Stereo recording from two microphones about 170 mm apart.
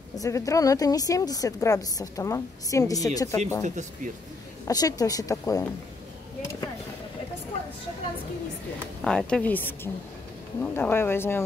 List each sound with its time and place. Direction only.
0.1 s speech: 20° left (ahead or behind)
3.6 s speech: 45° right (ahead or behind)
4.6 s speech: 20° left (ahead or behind)
9.0 s speech: 5° left (ahead or behind)